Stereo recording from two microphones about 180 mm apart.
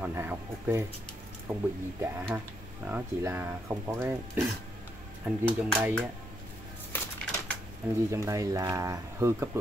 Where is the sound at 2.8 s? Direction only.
10° right (ahead or behind).